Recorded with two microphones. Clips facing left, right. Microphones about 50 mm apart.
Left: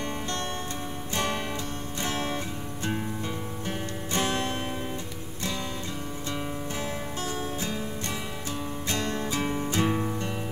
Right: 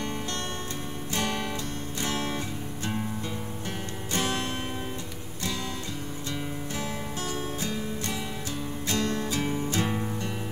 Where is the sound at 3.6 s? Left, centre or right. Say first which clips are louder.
Left 3 dB; centre.